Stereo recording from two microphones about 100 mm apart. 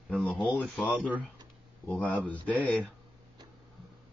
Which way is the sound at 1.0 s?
15° right (ahead or behind).